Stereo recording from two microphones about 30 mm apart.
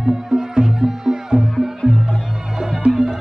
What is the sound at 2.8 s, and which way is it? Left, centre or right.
Music, right.